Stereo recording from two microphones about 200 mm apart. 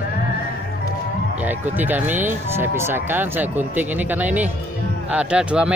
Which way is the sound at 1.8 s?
10° right (ahead or behind).